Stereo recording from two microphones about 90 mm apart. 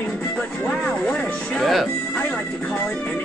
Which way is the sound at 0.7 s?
15° left (ahead or behind).